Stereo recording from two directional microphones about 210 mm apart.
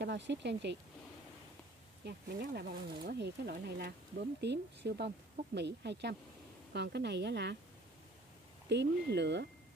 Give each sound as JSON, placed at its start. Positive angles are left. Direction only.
{"t": 0.0, "sound": "speech", "side_deg": -55}
{"t": 2.0, "sound": "speech", "side_deg": -45}
{"t": 8.6, "sound": "speech", "side_deg": -55}